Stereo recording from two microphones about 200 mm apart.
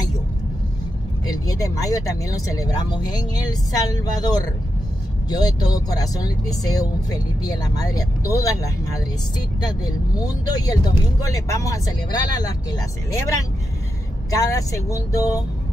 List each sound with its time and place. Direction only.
1.2 s speech: 20° left (ahead or behind)